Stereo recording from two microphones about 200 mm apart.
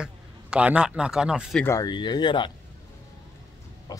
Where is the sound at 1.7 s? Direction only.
20° left (ahead or behind).